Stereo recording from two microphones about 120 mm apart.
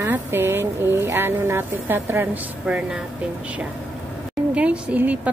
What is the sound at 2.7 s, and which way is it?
Speech, 10° right (ahead or behind).